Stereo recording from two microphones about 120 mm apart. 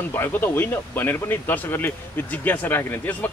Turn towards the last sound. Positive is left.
turn(degrees=15)  # may be behind; listen again after turning